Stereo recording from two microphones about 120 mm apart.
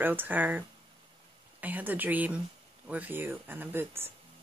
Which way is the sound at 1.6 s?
15° right (ahead or behind).